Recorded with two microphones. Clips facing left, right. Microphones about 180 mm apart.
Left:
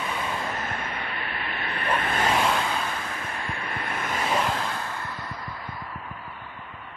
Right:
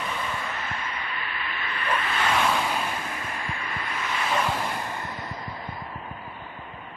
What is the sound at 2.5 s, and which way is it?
Vehicle, 10° right (ahead or behind).